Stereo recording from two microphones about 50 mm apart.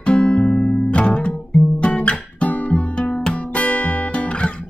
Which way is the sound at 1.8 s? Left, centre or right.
Left.